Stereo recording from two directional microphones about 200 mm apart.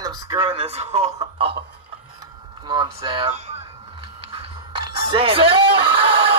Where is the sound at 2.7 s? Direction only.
25° right (ahead or behind).